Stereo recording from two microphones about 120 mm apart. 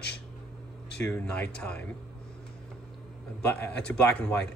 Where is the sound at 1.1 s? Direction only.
10° left (ahead or behind).